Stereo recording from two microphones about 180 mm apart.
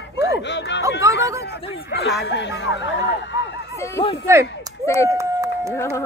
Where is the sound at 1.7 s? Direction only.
70° left (ahead or behind).